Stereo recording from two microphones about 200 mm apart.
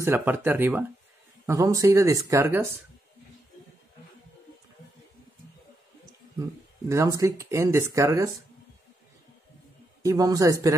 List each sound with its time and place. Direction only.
0.0 s speech: 10° right (ahead or behind)
6.9 s speech: 15° right (ahead or behind)
10.0 s speech: 20° right (ahead or behind)